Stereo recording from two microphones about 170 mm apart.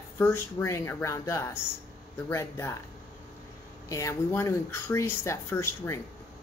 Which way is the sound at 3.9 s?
15° left (ahead or behind).